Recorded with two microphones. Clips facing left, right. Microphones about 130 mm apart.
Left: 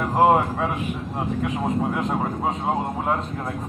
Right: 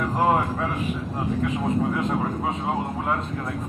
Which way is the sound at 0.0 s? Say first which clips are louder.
Left 4 dB; 30° left (ahead or behind).